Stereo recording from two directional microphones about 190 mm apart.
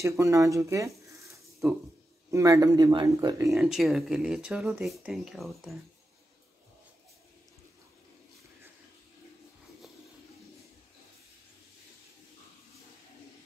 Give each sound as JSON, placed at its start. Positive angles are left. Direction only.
{"t": 0.0, "sound": "speech", "side_deg": -15}
{"t": 2.3, "sound": "speech", "side_deg": -15}
{"t": 3.5, "sound": "speech", "side_deg": 0}